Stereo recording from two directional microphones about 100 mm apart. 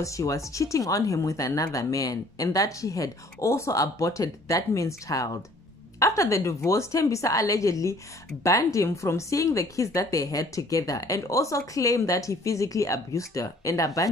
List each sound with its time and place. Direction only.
0.0 s speech: 30° left (ahead or behind)